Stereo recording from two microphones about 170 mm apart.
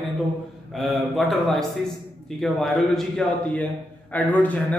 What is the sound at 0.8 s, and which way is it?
A man's voice, centre (ahead or behind).